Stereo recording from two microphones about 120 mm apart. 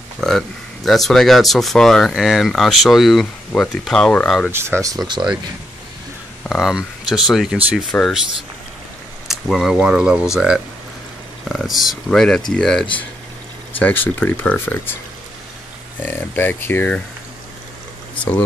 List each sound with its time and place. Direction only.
0.2 s speech: 5° left (ahead or behind)
4.5 s speech: 20° right (ahead or behind)
6.5 s speech: 5° right (ahead or behind)
9.3 s speech: centre (ahead or behind)
16.0 s speech: 15° left (ahead or behind)